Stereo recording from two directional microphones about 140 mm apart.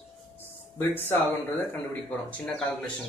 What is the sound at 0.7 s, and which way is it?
Speech, 15° left (ahead or behind).